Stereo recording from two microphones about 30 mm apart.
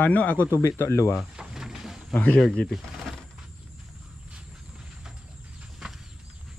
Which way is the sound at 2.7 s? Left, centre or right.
Centre.